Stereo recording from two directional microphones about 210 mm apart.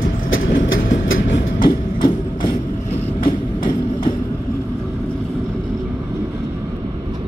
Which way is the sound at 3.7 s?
25° left (ahead or behind).